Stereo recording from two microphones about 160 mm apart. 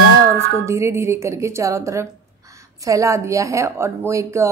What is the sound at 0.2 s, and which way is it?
A woman's voice, 20° right (ahead or behind).